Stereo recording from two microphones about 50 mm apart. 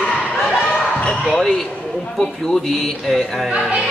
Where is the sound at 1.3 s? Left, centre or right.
Centre.